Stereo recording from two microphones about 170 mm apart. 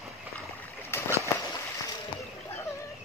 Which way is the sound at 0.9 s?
15° left (ahead or behind).